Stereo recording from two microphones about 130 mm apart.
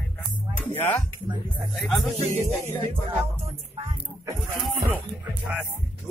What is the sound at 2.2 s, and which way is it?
Speech, 55° right (ahead or behind).